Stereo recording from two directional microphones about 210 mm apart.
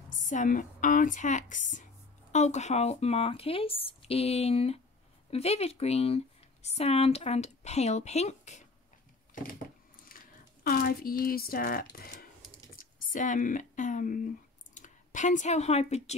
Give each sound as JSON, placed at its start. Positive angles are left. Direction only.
{"t": 0.2, "sound": "speech", "side_deg": 35}
{"t": 10.0, "sound": "speech", "side_deg": 40}